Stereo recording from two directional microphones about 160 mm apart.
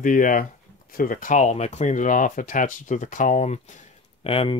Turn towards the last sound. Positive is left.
turn(degrees=35)  # may be behind; listen again after turning